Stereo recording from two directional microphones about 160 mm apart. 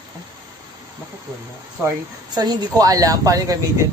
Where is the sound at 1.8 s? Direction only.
25° right (ahead or behind).